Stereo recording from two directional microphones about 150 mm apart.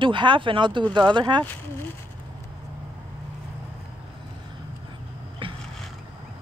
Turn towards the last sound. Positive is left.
turn(degrees=-35)  # may be behind; listen again after turning